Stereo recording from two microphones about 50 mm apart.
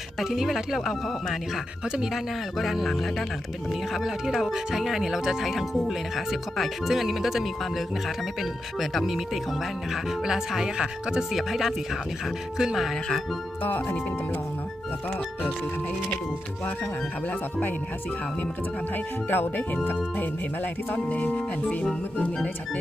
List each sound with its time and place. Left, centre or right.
0.2 s speech: centre
2.6 s speech: centre
3.9 s speech: centre
13.7 s speech: left
17.3 s speech: left
19.2 s speech: left
20.9 s speech: left